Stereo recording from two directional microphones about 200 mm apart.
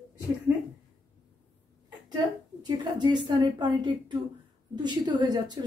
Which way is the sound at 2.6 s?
20° right (ahead or behind).